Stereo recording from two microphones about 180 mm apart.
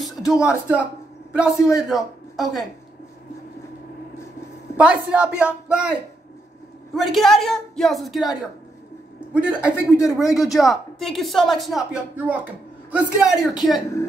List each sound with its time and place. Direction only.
0.0 s a sound: 5° right (ahead or behind)
1.3 s a man's voice: 5° right (ahead or behind)
4.7 s speech: 5° right (ahead or behind)
7.0 s speech: centre (ahead or behind)
9.3 s speech: 5° right (ahead or behind)
9.8 s speech: 15° left (ahead or behind)
10.1 s speech: centre (ahead or behind)